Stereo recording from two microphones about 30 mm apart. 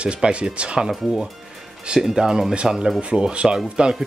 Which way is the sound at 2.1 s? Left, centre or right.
Centre.